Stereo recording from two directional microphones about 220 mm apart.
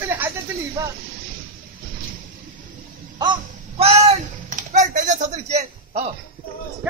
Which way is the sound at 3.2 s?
25° right (ahead or behind).